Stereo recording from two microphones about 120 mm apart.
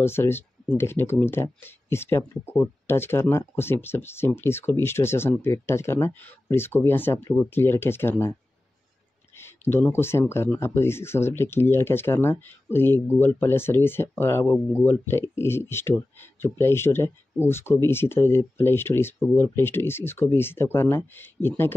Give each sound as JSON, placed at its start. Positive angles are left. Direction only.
{"t": 0.0, "sound": "speech", "side_deg": 20}